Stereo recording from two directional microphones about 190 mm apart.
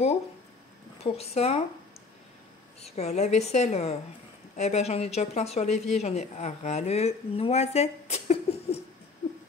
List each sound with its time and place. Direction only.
1.0 s a woman's voice: 30° left (ahead or behind)
2.8 s a woman's voice: 35° left (ahead or behind)